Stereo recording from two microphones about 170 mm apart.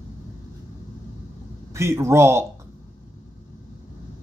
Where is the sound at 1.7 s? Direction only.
15° right (ahead or behind).